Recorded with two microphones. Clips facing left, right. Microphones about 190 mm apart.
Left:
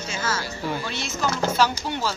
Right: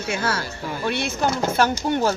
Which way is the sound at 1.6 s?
50° right (ahead or behind).